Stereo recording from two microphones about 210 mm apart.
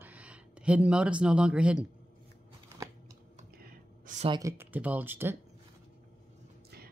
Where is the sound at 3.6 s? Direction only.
35° right (ahead or behind).